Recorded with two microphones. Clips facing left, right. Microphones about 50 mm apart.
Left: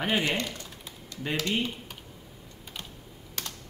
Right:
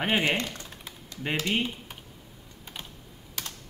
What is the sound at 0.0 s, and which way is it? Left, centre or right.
Speech, right.